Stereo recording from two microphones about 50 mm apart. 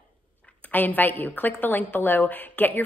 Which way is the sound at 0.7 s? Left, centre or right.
Left.